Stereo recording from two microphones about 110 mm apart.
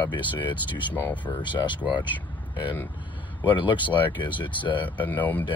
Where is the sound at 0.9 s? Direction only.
20° left (ahead or behind).